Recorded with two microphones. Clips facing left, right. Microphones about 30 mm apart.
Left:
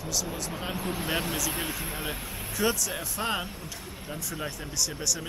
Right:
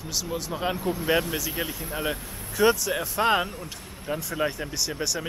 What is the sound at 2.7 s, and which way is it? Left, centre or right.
Speech, centre.